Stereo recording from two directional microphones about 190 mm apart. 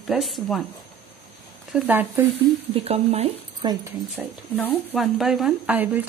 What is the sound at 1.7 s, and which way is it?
Speech, 5° right (ahead or behind).